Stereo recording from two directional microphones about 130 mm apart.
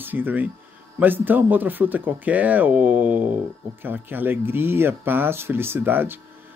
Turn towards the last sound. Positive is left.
turn(degrees=-15)  # may be behind; listen again after turning